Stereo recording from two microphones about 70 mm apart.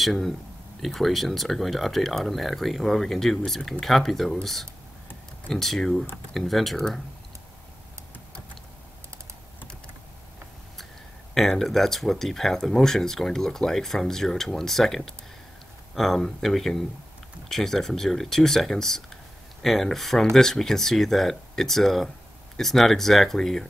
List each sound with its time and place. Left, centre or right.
0.0 s speech: centre
11.3 s speech: centre